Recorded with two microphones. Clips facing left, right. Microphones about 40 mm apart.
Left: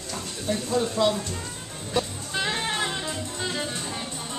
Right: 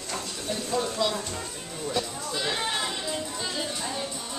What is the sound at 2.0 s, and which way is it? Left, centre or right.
Music, left.